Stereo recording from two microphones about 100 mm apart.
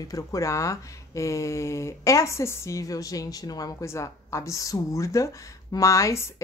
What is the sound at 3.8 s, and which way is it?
Speech, 30° left (ahead or behind).